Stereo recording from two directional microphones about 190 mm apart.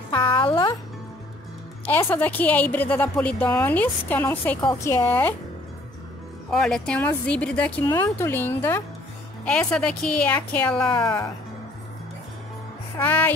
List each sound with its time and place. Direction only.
0.1 s music: 25° left (ahead or behind)
1.9 s speech: 10° left (ahead or behind)
6.5 s a woman's voice: 5° left (ahead or behind)
10.9 s speech: 25° left (ahead or behind)
12.9 s speech: 10° left (ahead or behind)